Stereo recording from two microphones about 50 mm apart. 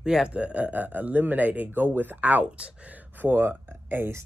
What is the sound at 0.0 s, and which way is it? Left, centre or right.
Speech, centre.